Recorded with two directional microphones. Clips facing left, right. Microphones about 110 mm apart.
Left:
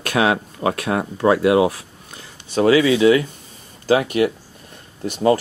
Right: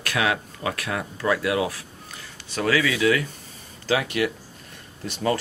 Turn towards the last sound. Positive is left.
turn(degrees=25)  # may be behind; listen again after turning